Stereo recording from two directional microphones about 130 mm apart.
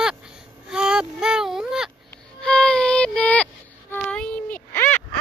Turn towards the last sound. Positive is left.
turn(degrees=15)  # may be behind; listen again after turning